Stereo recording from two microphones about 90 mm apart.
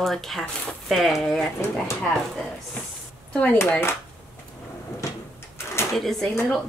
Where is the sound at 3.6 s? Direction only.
25° left (ahead or behind).